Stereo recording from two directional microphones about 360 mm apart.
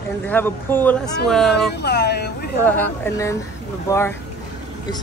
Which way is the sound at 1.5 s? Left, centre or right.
Left.